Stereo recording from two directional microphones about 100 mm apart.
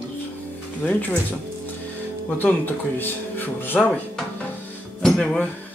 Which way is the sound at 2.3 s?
20° left (ahead or behind).